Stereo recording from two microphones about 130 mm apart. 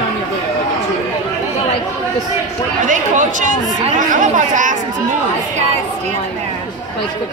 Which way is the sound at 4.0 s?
90° right.